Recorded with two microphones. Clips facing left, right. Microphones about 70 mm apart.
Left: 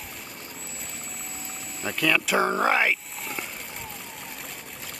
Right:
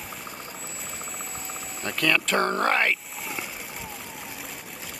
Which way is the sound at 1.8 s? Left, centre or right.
Centre.